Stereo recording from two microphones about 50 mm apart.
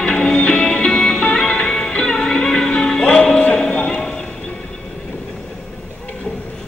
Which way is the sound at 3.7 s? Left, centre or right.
Centre.